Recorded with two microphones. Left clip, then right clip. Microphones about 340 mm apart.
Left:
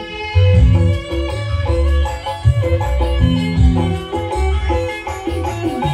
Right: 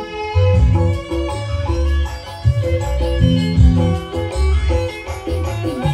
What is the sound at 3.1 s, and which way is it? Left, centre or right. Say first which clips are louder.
Music: even; centre.